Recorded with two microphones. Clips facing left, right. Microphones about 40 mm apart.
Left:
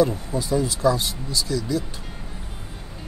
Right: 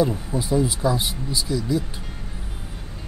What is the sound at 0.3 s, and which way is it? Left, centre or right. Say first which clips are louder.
Speech: right 1 dB; centre.